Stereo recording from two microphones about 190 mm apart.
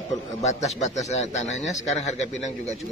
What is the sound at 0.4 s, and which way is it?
A man's voice, 35° left (ahead or behind).